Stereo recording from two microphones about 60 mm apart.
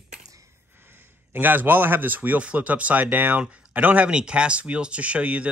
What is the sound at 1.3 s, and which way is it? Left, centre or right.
Speech, right.